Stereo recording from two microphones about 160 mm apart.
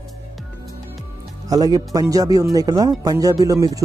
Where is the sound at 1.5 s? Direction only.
25° right (ahead or behind).